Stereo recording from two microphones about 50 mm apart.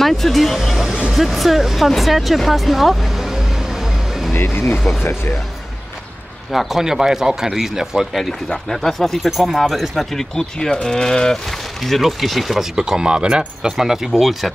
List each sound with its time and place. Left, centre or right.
0.0 s speech: centre
0.7 s music: centre
1.1 s speech: centre
4.3 s speech: left
6.5 s speech: centre
11.8 s speech: centre
12.7 s speech: centre